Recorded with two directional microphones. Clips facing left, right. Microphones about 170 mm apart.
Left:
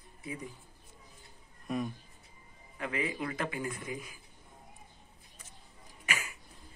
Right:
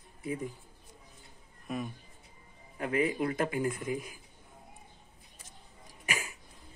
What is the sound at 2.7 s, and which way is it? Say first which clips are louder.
Speech: right 6 dB; 45° right (ahead or behind).